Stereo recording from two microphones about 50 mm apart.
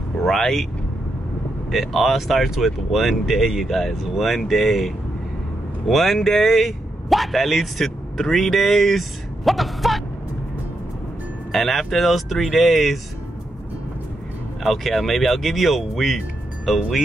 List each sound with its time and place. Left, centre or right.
0.2 s speech: centre
1.7 s speech: centre
11.5 s speech: centre
14.6 s speech: centre